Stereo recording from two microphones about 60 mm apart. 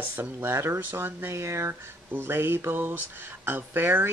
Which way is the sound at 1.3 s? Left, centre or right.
Right.